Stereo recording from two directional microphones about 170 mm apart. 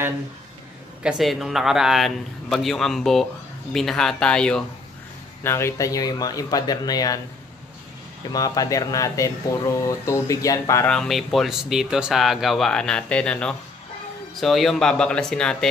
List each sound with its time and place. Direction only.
1.0 s speech: centre (ahead or behind); by 7.2 s 20° left (ahead or behind)
8.3 s speech: 20° left (ahead or behind)
10.9 s speech: centre (ahead or behind)